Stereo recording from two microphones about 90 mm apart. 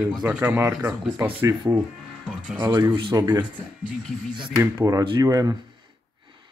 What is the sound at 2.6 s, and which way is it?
Speech, 55° right (ahead or behind).